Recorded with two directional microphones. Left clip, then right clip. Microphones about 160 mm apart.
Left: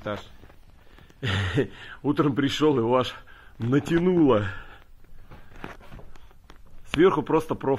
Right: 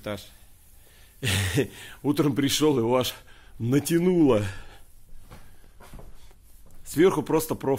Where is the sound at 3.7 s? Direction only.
30° right (ahead or behind).